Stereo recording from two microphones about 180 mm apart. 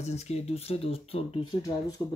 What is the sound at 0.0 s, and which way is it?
Speech, 35° left (ahead or behind).